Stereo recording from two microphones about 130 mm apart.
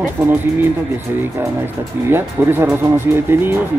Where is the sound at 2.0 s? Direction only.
15° right (ahead or behind).